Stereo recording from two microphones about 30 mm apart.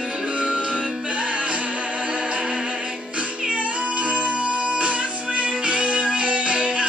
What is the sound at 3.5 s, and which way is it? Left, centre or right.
Music, right.